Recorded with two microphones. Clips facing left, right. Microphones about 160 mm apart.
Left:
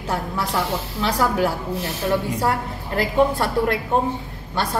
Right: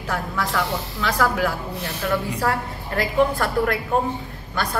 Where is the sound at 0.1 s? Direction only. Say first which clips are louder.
Left 1 dB; 25° left (ahead or behind).